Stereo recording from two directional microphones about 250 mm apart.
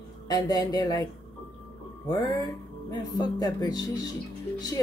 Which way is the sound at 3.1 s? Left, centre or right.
Centre.